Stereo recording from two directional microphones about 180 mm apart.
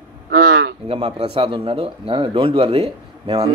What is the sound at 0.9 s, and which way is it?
Speech, 35° right (ahead or behind).